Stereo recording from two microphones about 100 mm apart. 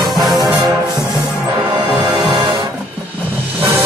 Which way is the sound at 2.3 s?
60° right (ahead or behind).